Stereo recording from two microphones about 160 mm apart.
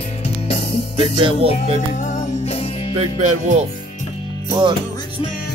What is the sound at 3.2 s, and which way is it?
Speech, 45° right (ahead or behind).